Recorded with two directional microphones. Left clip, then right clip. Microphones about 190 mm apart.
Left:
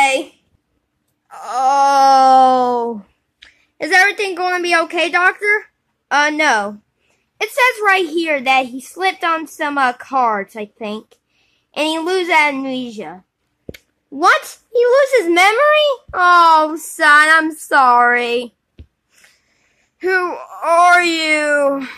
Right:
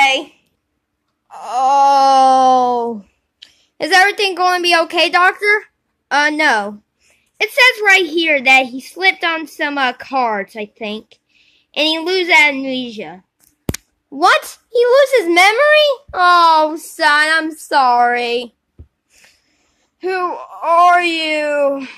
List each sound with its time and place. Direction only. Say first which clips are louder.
1.3 s wail: right 1 dB; 10° left (ahead or behind)
3.7 s a woman's voice: right 1 dB; 5° right (ahead or behind); by 18.5 s 15° left (ahead or behind)
20.0 s speech: left 2 dB; 15° left (ahead or behind)